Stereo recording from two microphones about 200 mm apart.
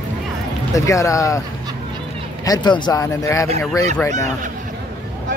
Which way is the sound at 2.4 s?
20° left (ahead or behind).